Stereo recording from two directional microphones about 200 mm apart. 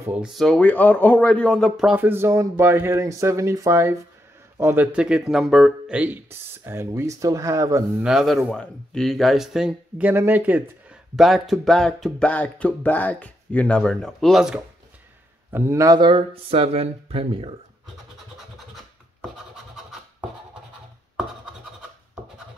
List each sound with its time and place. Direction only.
0.0 s a man's voice: 5° right (ahead or behind)
8.0 s speech: 5° right (ahead or behind)
15.5 s speech: 15° right (ahead or behind)
19.3 s scratch: centre (ahead or behind)